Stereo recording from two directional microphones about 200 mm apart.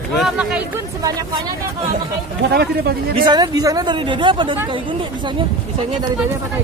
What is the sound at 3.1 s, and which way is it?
Speech, 25° right (ahead or behind).